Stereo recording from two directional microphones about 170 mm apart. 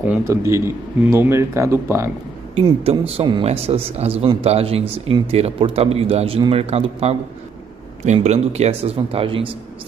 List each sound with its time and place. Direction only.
0.0 s a man's voice: 15° right (ahead or behind)
2.5 s speech: 35° right (ahead or behind)